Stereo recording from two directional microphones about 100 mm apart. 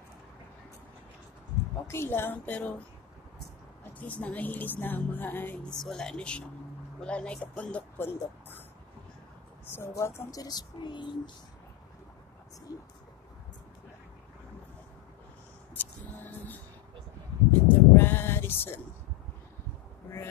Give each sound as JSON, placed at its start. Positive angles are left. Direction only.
{"t": 1.9, "sound": "speech", "side_deg": 25}
{"t": 4.0, "sound": "a woman's voice", "side_deg": 15}
{"t": 8.0, "sound": "speech", "side_deg": 20}
{"t": 9.7, "sound": "speech", "side_deg": 25}
{"t": 10.4, "sound": "speech", "side_deg": 45}
{"t": 12.7, "sound": "speech", "side_deg": 35}
{"t": 15.7, "sound": "music", "side_deg": 20}
{"t": 17.5, "sound": "a sound", "side_deg": 20}